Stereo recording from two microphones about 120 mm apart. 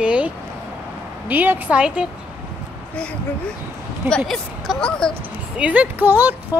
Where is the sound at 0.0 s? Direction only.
10° right (ahead or behind).